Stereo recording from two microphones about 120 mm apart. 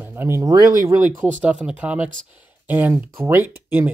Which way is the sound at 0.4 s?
30° right (ahead or behind).